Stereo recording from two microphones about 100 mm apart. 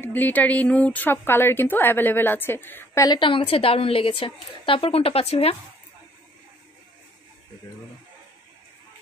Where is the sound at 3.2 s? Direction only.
60° left (ahead or behind); by 5.6 s 85° left.